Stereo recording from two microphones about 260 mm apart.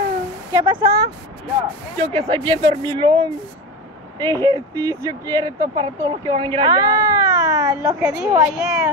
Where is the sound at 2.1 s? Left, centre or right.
Centre.